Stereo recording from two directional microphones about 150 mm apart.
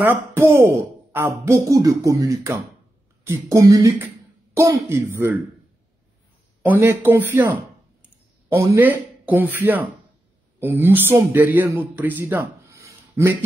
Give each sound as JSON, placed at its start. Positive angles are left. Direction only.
{"t": 0.0, "sound": "speech", "side_deg": -15}
{"t": 6.6, "sound": "speech", "side_deg": -15}